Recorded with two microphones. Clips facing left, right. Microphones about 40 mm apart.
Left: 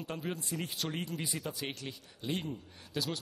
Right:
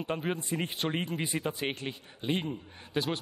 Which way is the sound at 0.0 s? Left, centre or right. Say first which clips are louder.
Right 6 dB; right.